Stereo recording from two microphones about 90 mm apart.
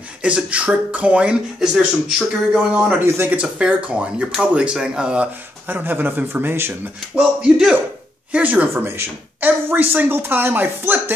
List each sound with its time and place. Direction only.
0.2 s speech: 15° right (ahead or behind)
3.0 s speech: 25° right (ahead or behind)
3.3 s speech: 15° right (ahead or behind)
7.2 s speech: 10° right (ahead or behind)